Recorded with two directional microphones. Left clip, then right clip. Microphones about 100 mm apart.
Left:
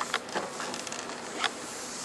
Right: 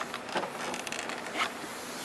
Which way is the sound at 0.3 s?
20° right (ahead or behind).